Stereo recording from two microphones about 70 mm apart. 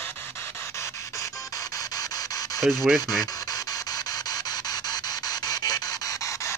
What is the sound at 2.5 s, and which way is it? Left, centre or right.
Speech, centre.